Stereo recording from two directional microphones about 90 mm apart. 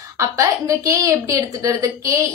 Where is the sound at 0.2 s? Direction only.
40° right (ahead or behind).